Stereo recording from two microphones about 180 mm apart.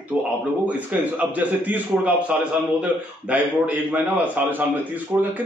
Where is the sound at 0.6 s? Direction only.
10° right (ahead or behind).